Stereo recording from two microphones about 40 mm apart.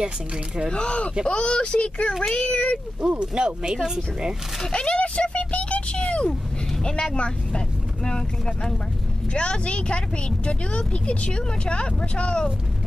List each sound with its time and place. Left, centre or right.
0.7 s speech: left
3.0 s speech: right
4.6 s a sound: left
6.8 s speech: centre